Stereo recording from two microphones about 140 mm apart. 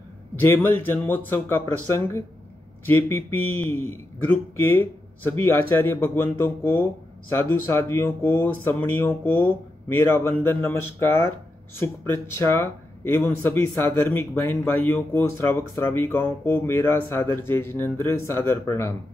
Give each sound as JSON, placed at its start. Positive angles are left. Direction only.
{"t": 0.4, "sound": "speech", "side_deg": 15}